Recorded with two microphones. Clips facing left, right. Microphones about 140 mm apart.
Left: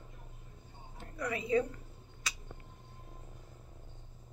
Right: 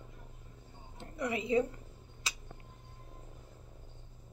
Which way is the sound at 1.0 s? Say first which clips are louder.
Right 2 dB; 25° right (ahead or behind).